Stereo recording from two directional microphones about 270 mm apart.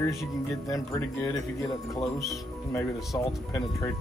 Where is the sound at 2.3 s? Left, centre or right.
Centre.